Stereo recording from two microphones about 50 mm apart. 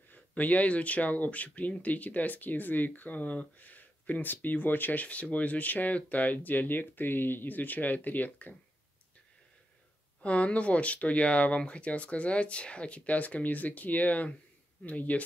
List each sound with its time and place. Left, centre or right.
0.1 s speech: left
10.2 s speech: left